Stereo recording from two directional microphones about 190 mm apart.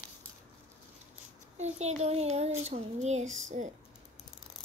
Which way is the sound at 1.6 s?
35° right (ahead or behind).